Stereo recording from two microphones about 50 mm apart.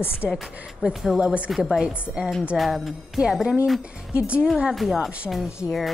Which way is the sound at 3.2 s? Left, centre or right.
Centre.